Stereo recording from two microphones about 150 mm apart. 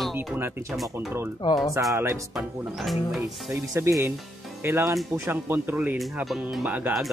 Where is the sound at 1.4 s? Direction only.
25° left (ahead or behind).